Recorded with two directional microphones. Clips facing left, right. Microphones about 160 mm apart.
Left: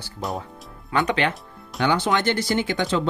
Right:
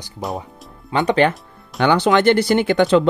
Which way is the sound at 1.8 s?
70° right (ahead or behind).